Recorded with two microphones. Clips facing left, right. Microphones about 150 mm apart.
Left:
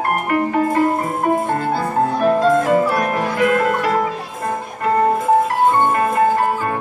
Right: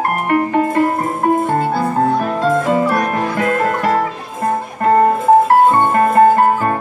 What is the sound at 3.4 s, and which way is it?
Music, 40° right (ahead or behind).